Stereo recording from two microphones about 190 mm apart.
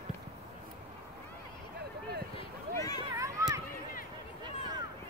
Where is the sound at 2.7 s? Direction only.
20° left (ahead or behind).